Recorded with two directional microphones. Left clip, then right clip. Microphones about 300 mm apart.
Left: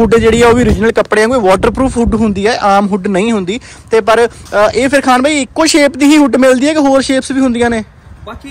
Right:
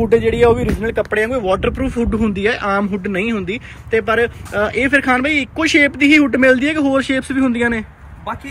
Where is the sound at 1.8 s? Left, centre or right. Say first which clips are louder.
Left 7 dB; centre.